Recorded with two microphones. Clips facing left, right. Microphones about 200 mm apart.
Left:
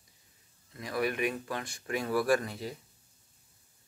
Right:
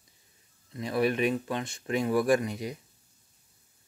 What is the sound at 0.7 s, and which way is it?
Speech, 25° right (ahead or behind).